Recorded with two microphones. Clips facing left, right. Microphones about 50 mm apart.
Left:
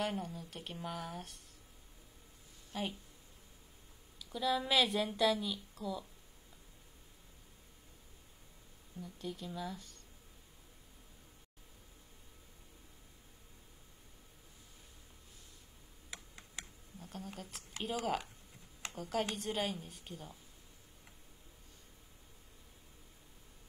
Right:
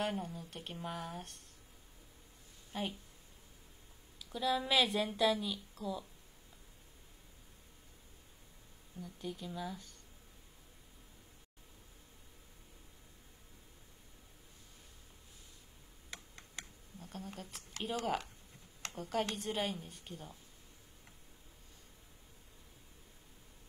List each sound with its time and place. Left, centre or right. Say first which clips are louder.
0.0 s speech: even; centre
2.7 s speech: even; centre
4.2 s speech: even; centre
5.5 s a woman's voice: even; right
9.2 s speech: even; centre
16.1 s computer keyboard: even; centre
18.0 s speech: even; centre